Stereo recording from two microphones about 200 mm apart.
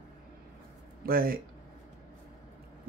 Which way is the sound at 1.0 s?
45° right (ahead or behind).